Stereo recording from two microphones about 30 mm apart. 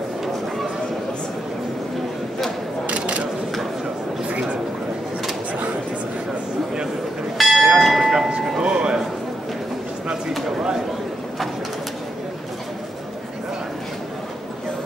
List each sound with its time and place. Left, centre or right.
2.9 s a sound: right
7.3 s bell: centre
8.5 s music: right